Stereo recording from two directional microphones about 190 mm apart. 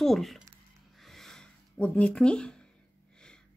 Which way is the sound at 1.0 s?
Centre (ahead or behind).